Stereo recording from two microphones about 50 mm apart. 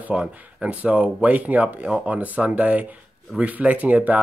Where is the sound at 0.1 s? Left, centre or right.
Right.